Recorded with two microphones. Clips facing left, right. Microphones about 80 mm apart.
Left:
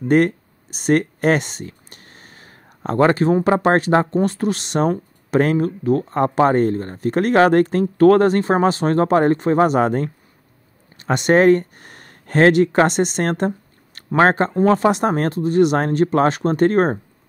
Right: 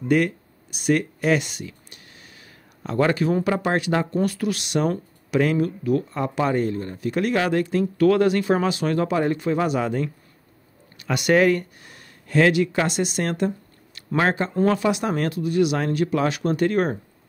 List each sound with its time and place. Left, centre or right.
0.1 s a sound: left
3.4 s speech: left
14.5 s speech: left